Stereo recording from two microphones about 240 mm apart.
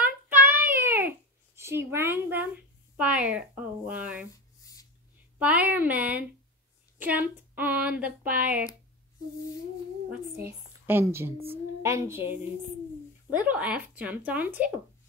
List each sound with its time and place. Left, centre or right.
0.0 s child singing: centre
5.4 s speech: centre
10.3 s a woman's voice: centre
11.3 s a woman's voice: right
11.8 s speech: centre
13.4 s speech: centre